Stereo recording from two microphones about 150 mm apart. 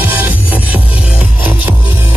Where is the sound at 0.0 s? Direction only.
15° right (ahead or behind).